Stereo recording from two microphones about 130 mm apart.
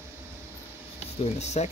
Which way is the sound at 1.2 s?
60° left (ahead or behind).